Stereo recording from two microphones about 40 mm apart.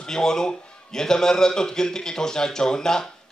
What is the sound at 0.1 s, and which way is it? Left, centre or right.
A man's voice, centre.